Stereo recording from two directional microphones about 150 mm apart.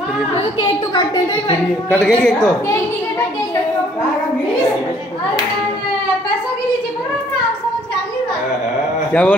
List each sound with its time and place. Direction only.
0.6 s a woman's voice: 30° left (ahead or behind)
1.9 s a woman's voice: 5° left (ahead or behind)
9.1 s a man's voice: 10° left (ahead or behind)